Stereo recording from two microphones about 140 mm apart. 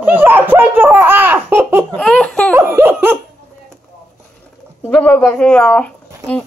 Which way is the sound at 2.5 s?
15° right (ahead or behind).